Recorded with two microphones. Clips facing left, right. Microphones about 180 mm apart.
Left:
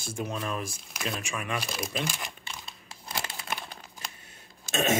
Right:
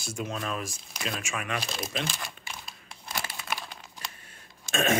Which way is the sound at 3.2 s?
25° left (ahead or behind).